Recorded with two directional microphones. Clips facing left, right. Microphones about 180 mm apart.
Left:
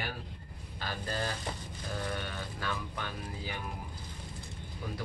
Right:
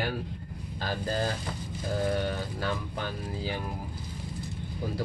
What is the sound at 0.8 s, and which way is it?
Speech, 40° right (ahead or behind).